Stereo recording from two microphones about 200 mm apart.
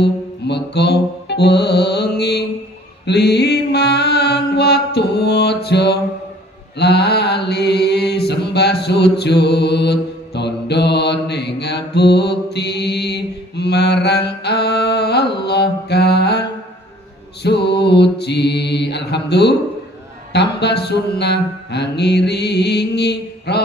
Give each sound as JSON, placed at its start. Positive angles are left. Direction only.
{"t": 0.0, "sound": "mantra", "side_deg": 55}
{"t": 15.3, "sound": "music", "side_deg": 55}
{"t": 17.4, "sound": "mantra", "side_deg": 55}